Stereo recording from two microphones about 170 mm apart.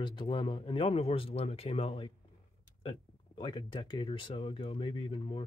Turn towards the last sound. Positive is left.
turn(degrees=30)  # may be behind; listen again after turning